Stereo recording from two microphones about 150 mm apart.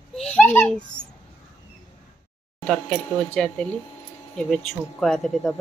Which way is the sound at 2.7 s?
5° left (ahead or behind).